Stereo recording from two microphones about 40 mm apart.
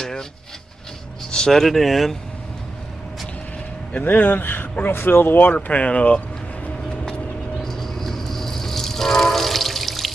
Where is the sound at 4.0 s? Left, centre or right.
Left.